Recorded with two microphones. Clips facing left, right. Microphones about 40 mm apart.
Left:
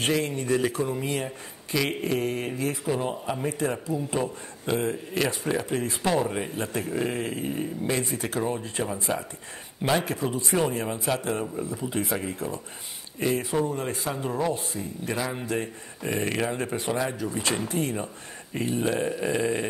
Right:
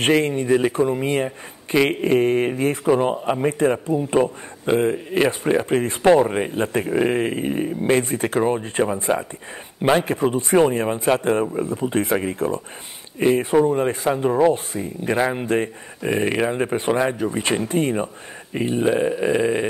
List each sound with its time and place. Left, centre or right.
0.0 s a man's voice: right
16.1 s a man's voice: right
18.6 s speech: right